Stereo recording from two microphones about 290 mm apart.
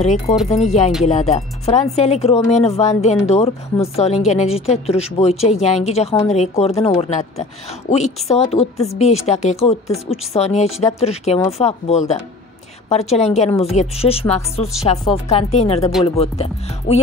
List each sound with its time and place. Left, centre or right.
0.0 s a woman's voice: left